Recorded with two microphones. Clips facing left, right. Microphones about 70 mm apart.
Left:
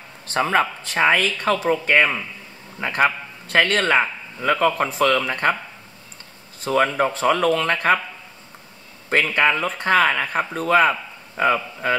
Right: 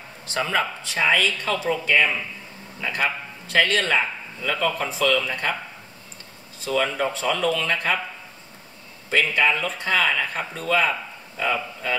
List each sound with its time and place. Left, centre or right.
0.3 s a man's voice: left
6.6 s a man's voice: left
9.1 s a man's voice: left